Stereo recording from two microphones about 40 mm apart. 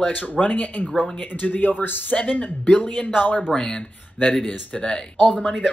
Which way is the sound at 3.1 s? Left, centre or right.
Left.